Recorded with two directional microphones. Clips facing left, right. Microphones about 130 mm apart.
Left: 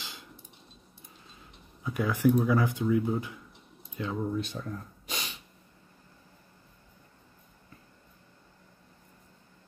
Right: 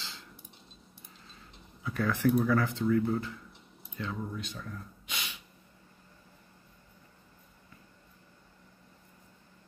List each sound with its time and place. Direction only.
1.8 s speech: 15° left (ahead or behind); by 5.4 s 35° left (ahead or behind)